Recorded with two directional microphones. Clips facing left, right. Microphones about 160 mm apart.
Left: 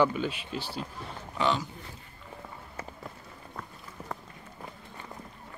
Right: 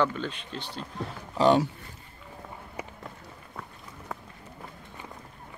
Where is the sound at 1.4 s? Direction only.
35° right (ahead or behind).